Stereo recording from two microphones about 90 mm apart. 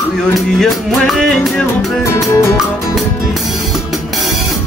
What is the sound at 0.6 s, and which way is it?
Music, 5° left (ahead or behind).